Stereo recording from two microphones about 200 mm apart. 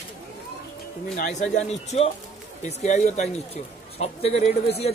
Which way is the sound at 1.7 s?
35° left (ahead or behind).